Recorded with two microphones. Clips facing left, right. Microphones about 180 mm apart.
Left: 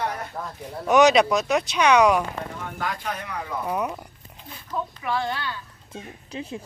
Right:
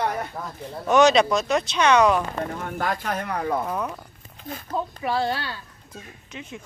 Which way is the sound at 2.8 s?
50° right (ahead or behind).